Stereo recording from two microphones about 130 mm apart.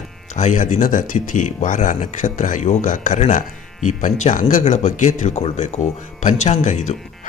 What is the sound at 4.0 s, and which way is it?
Speech, 75° left (ahead or behind).